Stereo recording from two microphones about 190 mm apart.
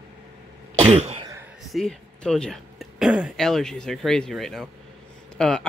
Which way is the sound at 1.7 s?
Centre (ahead or behind).